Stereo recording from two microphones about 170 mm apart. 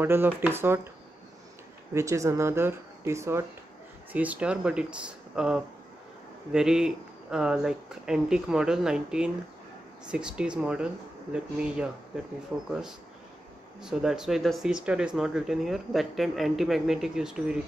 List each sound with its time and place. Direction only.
0.0 s speech: 15° right (ahead or behind)
2.0 s speech: 15° right (ahead or behind)